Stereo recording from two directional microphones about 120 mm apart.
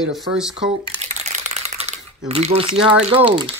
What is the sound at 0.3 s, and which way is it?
Speech, 5° right (ahead or behind).